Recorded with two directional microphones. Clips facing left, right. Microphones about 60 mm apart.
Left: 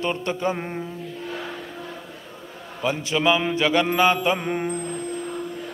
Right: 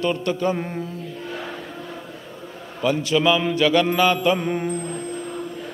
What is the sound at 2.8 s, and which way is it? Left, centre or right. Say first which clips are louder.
A man's voice: right 2 dB; left.